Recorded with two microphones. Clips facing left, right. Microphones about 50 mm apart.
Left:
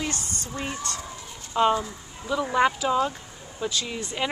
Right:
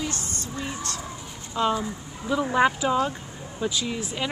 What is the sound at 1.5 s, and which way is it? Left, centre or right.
Speech, left.